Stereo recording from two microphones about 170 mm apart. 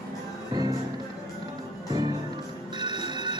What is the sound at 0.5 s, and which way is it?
Music, 25° right (ahead or behind).